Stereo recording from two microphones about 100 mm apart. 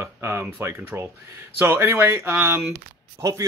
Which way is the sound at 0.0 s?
25° right (ahead or behind).